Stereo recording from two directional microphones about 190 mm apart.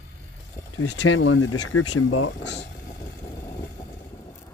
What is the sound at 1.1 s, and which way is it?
Speech, 85° left.